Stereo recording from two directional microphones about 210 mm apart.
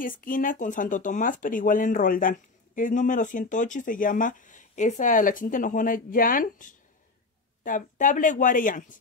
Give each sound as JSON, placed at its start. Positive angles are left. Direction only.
{"t": 0.0, "sound": "speech", "side_deg": 40}